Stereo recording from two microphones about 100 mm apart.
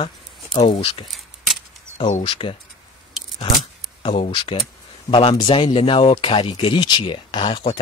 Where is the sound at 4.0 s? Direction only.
60° left (ahead or behind).